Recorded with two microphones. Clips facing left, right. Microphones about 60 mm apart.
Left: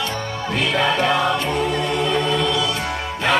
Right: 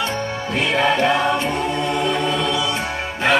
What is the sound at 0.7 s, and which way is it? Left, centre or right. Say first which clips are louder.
Music: right 2 dB; right.